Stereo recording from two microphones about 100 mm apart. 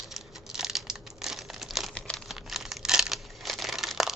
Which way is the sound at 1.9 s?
10° left (ahead or behind).